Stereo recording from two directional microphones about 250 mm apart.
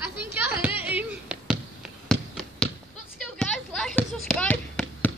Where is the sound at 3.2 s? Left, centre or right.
Centre.